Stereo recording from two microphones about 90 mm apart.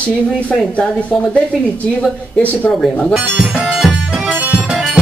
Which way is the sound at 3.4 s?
10° right (ahead or behind).